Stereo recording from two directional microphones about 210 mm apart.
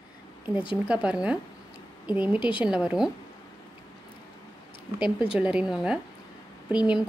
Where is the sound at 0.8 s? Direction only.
5° right (ahead or behind).